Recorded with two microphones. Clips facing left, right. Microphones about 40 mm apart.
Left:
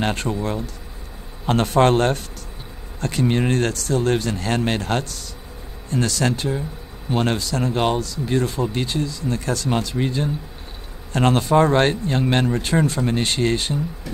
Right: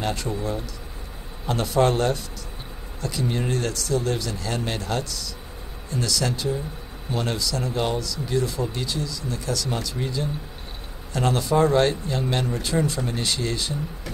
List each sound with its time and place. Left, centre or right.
0.0 s speech: left